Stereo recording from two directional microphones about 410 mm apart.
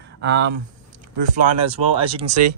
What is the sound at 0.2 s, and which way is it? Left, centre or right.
Speech, right.